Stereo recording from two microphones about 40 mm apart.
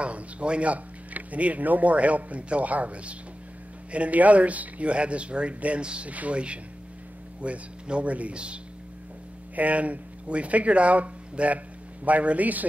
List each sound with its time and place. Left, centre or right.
0.0 s speech: right
9.6 s speech: right